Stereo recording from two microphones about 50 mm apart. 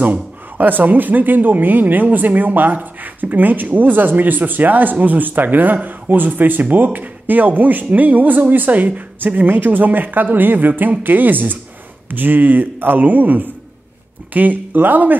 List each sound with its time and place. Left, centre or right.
0.0 s speech: right